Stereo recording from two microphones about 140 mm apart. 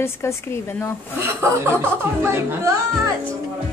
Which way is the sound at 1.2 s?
15° right (ahead or behind).